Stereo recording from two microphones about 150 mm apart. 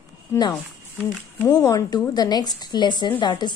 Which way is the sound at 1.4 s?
25° left (ahead or behind).